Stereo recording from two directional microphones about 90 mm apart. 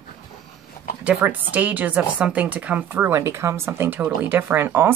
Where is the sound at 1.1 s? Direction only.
15° right (ahead or behind).